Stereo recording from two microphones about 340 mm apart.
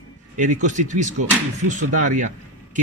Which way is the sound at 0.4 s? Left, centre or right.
Right.